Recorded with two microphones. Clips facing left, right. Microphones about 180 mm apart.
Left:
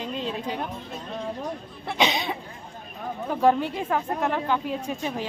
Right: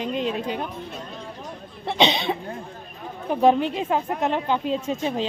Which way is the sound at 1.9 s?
25° right (ahead or behind).